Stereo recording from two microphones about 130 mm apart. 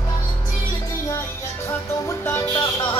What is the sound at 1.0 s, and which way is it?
Music, 20° left (ahead or behind).